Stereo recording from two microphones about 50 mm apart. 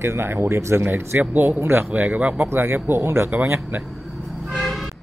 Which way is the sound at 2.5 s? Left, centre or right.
Right.